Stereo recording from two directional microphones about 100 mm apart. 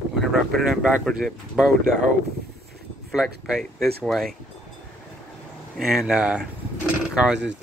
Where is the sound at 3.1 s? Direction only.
5° right (ahead or behind).